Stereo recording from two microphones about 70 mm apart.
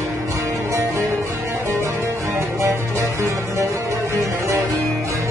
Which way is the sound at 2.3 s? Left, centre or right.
Right.